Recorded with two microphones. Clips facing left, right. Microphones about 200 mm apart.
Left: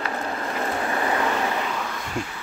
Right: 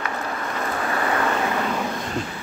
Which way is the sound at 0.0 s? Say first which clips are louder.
Even; 30° left (ahead or behind).